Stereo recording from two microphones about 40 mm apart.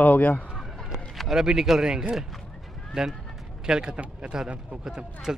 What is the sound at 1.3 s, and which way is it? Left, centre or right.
A man's voice, centre.